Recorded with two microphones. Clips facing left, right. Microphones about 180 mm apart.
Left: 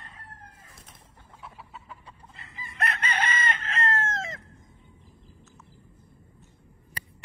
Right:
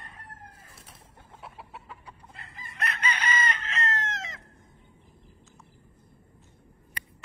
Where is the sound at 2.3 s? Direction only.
55° right (ahead or behind).